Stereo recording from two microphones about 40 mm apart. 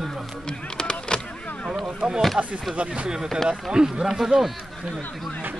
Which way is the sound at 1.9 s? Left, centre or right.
Centre.